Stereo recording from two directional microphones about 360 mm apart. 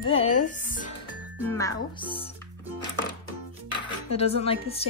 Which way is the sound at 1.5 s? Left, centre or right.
Centre.